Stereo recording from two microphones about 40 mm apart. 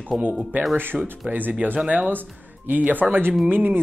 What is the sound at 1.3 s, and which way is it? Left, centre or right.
Speech, right.